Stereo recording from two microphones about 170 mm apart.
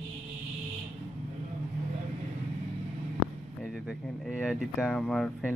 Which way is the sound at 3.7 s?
5° right (ahead or behind).